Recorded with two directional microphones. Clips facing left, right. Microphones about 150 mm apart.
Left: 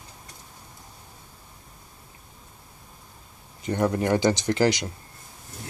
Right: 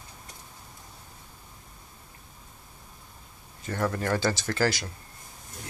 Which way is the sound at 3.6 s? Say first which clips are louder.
Left 5 dB; 20° left (ahead or behind).